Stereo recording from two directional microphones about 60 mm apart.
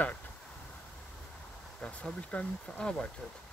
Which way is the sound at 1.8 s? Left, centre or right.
Centre.